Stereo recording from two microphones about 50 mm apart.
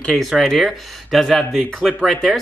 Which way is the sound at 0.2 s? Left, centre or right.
Centre.